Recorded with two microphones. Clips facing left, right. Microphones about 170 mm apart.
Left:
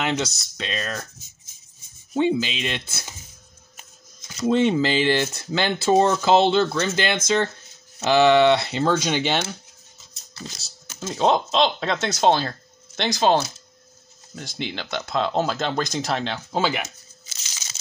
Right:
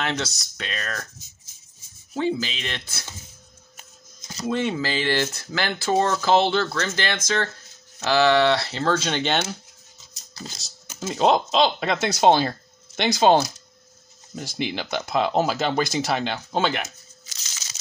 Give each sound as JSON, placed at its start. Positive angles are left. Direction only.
{"t": 0.0, "sound": "speech", "side_deg": 15}
{"t": 2.1, "sound": "speech", "side_deg": 20}
{"t": 4.5, "sound": "speech", "side_deg": 20}
{"t": 10.9, "sound": "speech", "side_deg": -5}